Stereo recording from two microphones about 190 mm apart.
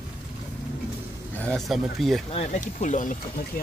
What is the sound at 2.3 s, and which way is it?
Speech, 35° left (ahead or behind).